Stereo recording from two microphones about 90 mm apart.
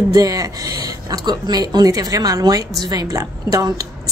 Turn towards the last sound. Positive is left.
turn(degrees=-40)  # may be behind; listen again after turning